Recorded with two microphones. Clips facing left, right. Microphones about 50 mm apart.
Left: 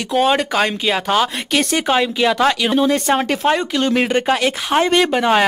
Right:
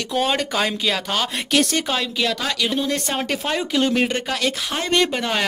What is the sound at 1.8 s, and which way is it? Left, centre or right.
Speech, left.